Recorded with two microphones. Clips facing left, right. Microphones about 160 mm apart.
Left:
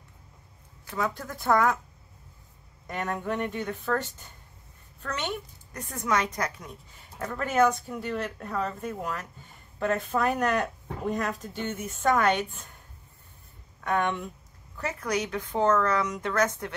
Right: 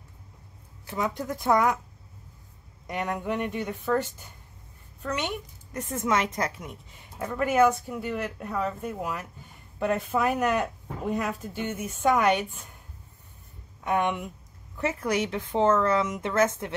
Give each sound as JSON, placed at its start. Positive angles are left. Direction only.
{"t": 0.8, "sound": "speech", "side_deg": -20}
{"t": 2.9, "sound": "a woman's voice", "side_deg": -15}
{"t": 5.7, "sound": "a woman's voice", "side_deg": -25}
{"t": 13.8, "sound": "a woman's voice", "side_deg": -20}
{"t": 14.8, "sound": "speech", "side_deg": -25}